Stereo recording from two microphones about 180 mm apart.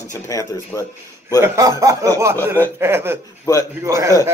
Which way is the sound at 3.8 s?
15° right (ahead or behind).